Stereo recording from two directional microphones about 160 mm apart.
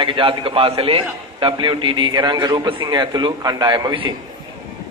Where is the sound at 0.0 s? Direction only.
30° right (ahead or behind).